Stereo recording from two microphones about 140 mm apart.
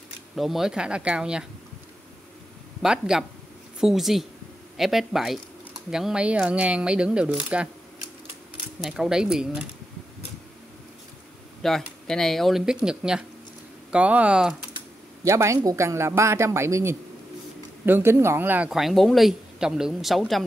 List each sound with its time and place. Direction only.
0.4 s speech: centre (ahead or behind)
2.8 s speech: 5° right (ahead or behind)
8.8 s speech: 5° right (ahead or behind)
11.6 s speech: 5° left (ahead or behind)
15.2 s a man's voice: 20° right (ahead or behind)
18.7 s speech: centre (ahead or behind)